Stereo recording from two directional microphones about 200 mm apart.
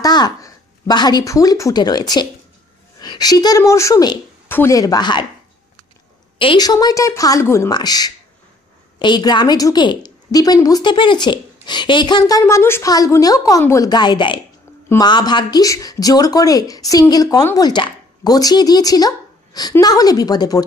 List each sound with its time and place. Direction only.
0.0 s speech: 20° left (ahead or behind)
6.3 s speech: 25° left (ahead or behind)